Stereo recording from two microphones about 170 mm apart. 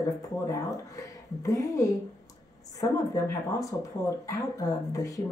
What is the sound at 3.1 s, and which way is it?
Speech, 20° left (ahead or behind).